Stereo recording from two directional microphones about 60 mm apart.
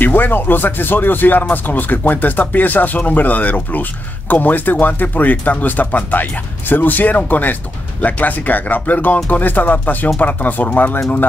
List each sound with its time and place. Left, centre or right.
0.0 s speech: left